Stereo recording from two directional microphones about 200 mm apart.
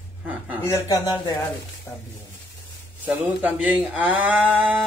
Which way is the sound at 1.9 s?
5° left (ahead or behind).